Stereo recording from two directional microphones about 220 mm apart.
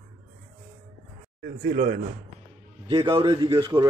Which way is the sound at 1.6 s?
40° right (ahead or behind).